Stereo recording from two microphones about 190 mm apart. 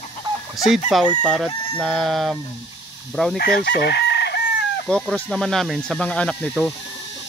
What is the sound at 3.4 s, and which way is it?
Chicken, 60° left (ahead or behind).